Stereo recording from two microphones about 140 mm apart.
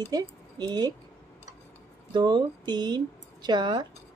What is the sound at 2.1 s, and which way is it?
Speech, 35° right (ahead or behind).